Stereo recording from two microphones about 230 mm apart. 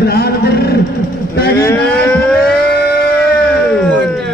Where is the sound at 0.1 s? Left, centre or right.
Left.